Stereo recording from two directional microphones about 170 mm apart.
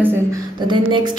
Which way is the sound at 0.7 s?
25° right (ahead or behind).